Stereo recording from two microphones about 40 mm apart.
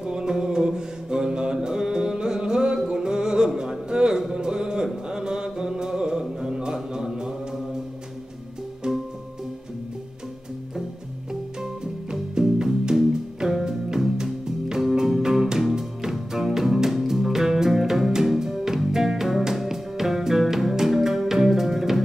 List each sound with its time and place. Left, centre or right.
0.0 s mantra: centre
4.8 s music: centre
6.4 s mantra: centre
11.6 s music: centre